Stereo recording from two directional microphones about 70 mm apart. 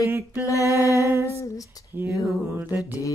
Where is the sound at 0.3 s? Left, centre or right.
Left.